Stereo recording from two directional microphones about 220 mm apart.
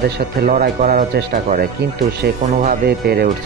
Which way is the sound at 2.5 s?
35° right (ahead or behind).